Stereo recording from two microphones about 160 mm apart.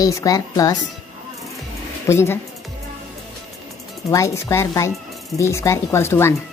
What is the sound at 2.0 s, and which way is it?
Speech, 15° left (ahead or behind).